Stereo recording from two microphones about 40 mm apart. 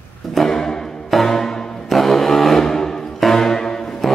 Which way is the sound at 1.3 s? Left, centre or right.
Centre.